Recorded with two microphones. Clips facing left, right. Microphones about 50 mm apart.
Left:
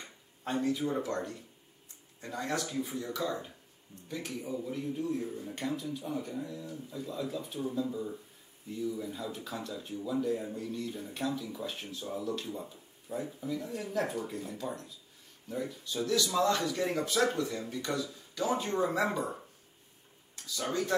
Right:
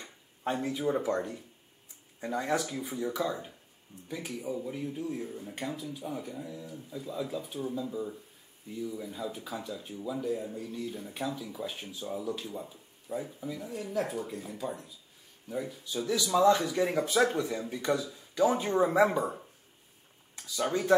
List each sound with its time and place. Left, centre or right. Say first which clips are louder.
0.4 s speech: even; centre
20.3 s speech: right 3 dB; centre